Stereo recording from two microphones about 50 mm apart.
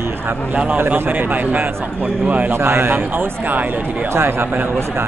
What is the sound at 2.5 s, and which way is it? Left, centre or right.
Speech, right.